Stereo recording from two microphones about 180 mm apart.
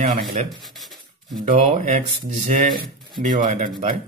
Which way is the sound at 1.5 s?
40° right (ahead or behind).